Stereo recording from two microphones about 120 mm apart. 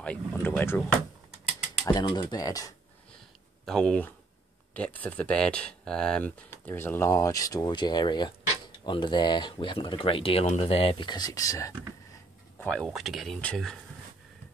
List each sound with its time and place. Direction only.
0.0 s speech: 15° left (ahead or behind)
1.9 s speech: 35° left (ahead or behind)
3.6 s speech: 5° left (ahead or behind); by 10.4 s 50° left (ahead or behind)
10.4 s speech: 65° left (ahead or behind)
11.1 s speech: 35° left (ahead or behind)
12.6 s speech: 5° left (ahead or behind)